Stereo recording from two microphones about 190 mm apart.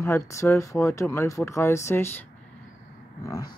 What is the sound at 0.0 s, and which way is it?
Speech, 15° left (ahead or behind).